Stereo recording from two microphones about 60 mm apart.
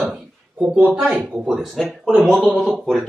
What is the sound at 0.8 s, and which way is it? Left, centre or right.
Speech, right.